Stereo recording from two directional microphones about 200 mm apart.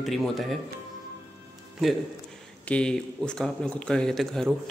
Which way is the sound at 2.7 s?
5° left (ahead or behind).